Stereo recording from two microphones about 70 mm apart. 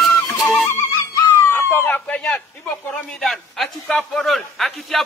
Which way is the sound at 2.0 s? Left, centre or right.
Centre.